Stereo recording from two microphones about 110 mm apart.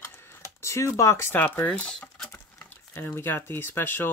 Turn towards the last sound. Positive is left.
turn(degrees=20)  # may be behind; listen again after turning